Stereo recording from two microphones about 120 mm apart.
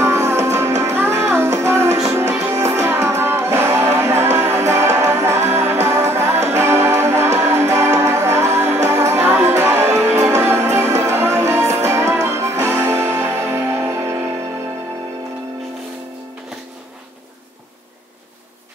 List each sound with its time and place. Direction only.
0.0 s music: 20° right (ahead or behind)